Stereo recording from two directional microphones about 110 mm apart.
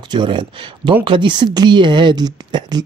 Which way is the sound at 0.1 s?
45° right (ahead or behind).